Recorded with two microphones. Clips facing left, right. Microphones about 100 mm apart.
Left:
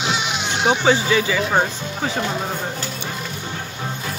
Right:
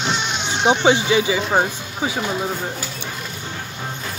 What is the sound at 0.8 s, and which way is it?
Speech, 20° right (ahead or behind).